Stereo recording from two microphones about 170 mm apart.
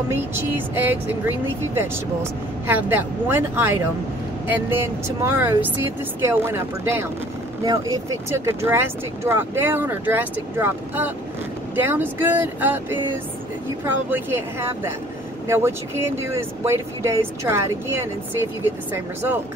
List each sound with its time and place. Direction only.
0.1 s speech: 10° right (ahead or behind)
2.6 s speech: 10° right (ahead or behind)
14.1 s speech: 15° right (ahead or behind)